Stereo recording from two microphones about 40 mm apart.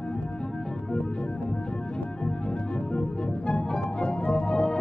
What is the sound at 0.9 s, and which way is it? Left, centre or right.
Organ, centre.